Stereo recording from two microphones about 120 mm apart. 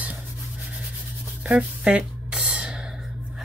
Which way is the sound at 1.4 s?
5° right (ahead or behind).